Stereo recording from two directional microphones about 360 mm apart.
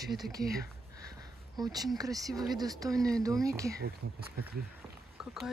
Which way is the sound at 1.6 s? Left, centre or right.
Centre.